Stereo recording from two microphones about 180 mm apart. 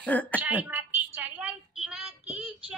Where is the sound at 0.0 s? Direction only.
10° left (ahead or behind).